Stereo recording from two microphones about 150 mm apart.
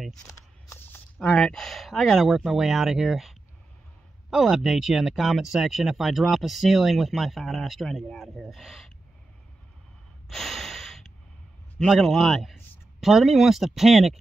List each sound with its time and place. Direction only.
0.7 s speech: 15° left (ahead or behind)
10.2 s snort: centre (ahead or behind)
11.8 s speech: centre (ahead or behind)